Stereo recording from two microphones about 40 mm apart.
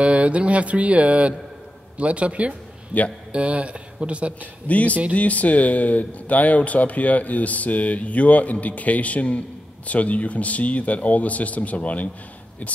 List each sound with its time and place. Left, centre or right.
0.0 s a sound: right
2.9 s speech: left
3.3 s speech: right
4.4 s speech: left